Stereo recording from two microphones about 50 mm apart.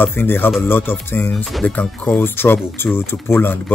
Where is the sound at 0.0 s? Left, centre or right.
Left.